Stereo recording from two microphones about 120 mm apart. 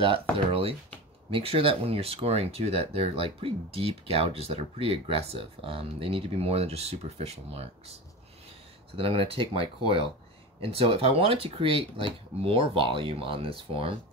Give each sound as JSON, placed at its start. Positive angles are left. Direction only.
{"t": 0.0, "sound": "speech", "side_deg": -50}
{"t": 8.9, "sound": "speech", "side_deg": -50}